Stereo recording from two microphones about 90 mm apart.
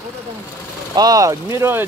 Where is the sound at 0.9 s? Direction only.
45° right (ahead or behind); by 1.8 s 30° right (ahead or behind).